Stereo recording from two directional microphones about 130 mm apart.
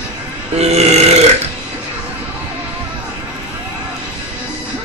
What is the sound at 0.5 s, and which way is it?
Burping, 55° right (ahead or behind).